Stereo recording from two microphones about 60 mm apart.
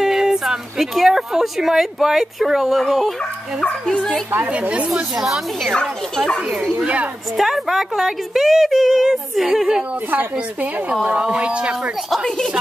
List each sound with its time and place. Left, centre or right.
0.0 s speech: centre
3.8 s a child's voice: centre
4.5 s speech: centre
5.1 s speech: centre
5.7 s a child's voice: centre
7.3 s speech: centre
11.1 s speech: right